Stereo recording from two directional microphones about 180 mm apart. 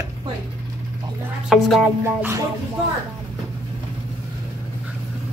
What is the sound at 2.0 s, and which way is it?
Speech, 15° right (ahead or behind).